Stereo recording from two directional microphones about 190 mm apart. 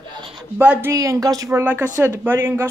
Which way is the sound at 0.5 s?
10° right (ahead or behind).